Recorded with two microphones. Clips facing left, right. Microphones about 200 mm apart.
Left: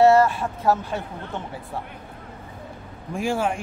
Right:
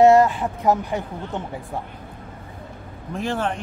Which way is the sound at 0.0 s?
15° right (ahead or behind).